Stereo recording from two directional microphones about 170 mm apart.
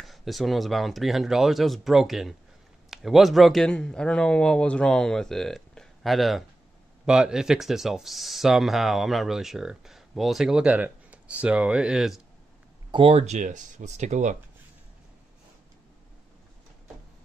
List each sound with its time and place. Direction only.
0.0 s speech: centre (ahead or behind)
12.9 s speech: 35° right (ahead or behind)